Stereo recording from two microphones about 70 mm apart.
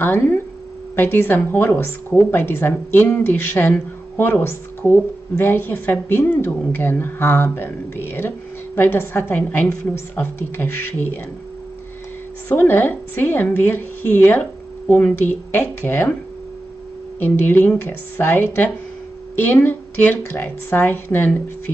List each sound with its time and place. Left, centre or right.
0.0 s a woman's voice: left
12.4 s a woman's voice: left
17.2 s a woman's voice: left